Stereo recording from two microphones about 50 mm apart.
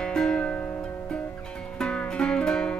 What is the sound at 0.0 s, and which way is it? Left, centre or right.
Music, centre.